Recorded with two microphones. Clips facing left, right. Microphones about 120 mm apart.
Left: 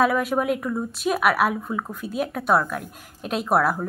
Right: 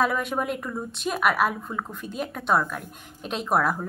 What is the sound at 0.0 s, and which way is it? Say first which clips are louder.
Speech: left 4 dB; 5° left (ahead or behind).